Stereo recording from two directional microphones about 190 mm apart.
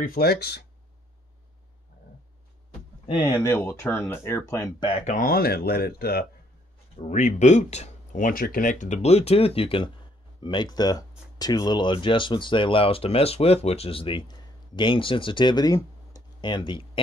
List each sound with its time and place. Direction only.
0.0 s speech: 55° left (ahead or behind)
3.2 s speech: 20° left (ahead or behind)
5.0 s speech: 45° left (ahead or behind)
7.0 s speech: 40° left (ahead or behind); by 17.0 s 25° left (ahead or behind)